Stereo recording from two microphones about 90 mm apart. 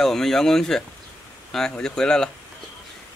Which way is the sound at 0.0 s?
5° left (ahead or behind).